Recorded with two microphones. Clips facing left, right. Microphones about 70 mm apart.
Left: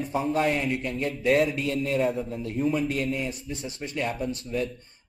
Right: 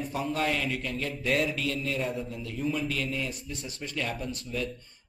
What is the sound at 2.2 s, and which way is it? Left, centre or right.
Speech, left.